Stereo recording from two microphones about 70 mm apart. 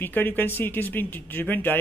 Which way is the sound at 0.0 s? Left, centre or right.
Left.